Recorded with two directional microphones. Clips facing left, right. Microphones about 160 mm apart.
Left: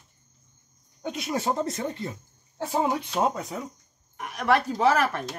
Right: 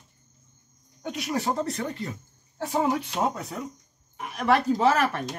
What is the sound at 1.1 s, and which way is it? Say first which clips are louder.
Speech: even; 25° left (ahead or behind).